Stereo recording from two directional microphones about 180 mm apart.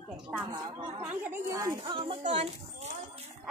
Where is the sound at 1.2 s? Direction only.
15° right (ahead or behind).